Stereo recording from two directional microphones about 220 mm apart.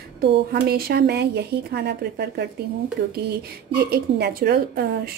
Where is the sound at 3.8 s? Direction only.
45° right (ahead or behind).